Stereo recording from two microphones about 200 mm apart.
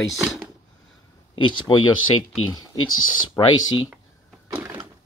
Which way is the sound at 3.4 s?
20° left (ahead or behind).